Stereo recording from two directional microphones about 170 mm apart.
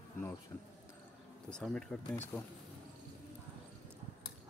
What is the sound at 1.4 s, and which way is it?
Speech, 5° left (ahead or behind).